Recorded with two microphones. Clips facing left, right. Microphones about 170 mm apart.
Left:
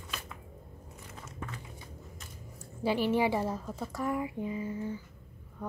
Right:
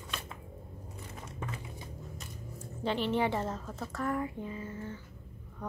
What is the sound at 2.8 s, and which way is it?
Speech, 10° left (ahead or behind).